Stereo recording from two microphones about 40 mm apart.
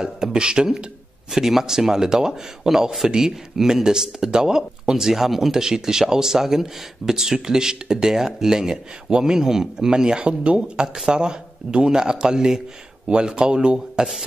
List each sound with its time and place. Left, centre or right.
0.0 s speech: centre